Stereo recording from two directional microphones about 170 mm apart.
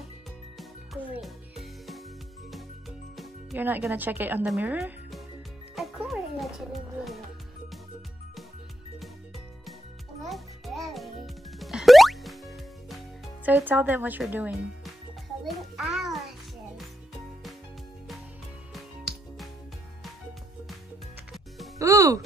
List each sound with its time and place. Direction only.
1.1 s music: centre (ahead or behind)
3.5 s speech: 10° right (ahead or behind)
5.8 s music: centre (ahead or behind)
10.2 s music: centre (ahead or behind)
13.5 s speech: 10° right (ahead or behind)
15.4 s music: centre (ahead or behind)
21.7 s music: 20° right (ahead or behind)